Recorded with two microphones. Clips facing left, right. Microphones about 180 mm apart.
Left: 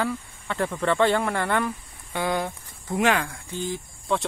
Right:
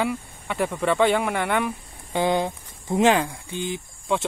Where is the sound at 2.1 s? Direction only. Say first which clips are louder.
Right 4 dB; 20° right (ahead or behind).